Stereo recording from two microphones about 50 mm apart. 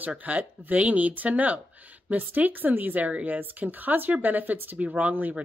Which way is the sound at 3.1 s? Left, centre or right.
Right.